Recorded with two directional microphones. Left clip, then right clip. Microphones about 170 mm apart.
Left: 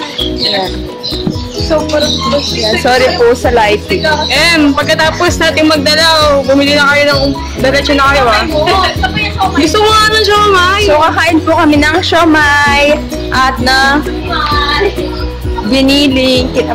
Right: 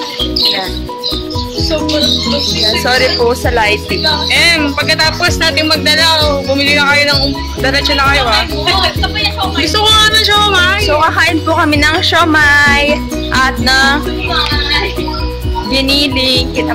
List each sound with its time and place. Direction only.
2.8 s speech: 5° right (ahead or behind)
4.3 s music: 35° left (ahead or behind)
7.6 s speech: 30° left (ahead or behind)
9.7 s speech: 30° left (ahead or behind)
11.0 s speech: centre (ahead or behind)
15.7 s speech: centre (ahead or behind)